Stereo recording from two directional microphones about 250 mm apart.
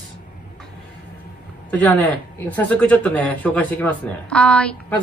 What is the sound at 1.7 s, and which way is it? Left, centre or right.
Speech, centre.